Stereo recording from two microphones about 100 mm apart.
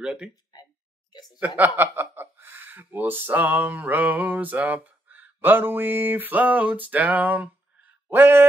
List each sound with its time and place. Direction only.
0.0 s speech: 10° right (ahead or behind)
1.6 s speech: 20° right (ahead or behind)
8.1 s a sound: 20° right (ahead or behind)